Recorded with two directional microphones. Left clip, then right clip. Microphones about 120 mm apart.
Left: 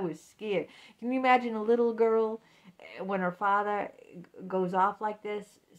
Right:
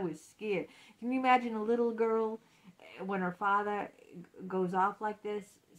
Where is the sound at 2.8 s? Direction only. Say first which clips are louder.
Left 5 dB; 40° left (ahead or behind).